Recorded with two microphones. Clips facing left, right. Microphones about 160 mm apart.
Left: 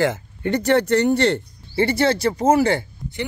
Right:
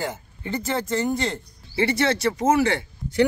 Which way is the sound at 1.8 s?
30° left (ahead or behind).